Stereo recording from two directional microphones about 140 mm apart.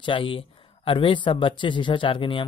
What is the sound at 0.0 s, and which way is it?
Speech, 40° left (ahead or behind).